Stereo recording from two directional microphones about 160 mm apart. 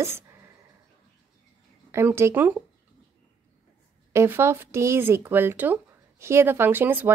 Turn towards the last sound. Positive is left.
turn(degrees=-10)  # may be behind; listen again after turning